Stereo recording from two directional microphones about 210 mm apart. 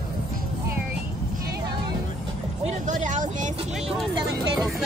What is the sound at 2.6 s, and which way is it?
Speech, 35° right (ahead or behind).